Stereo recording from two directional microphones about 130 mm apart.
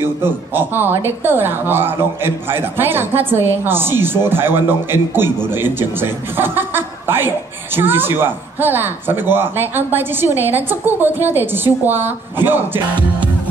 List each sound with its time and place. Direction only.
0.0 s a man's voice: 15° right (ahead or behind)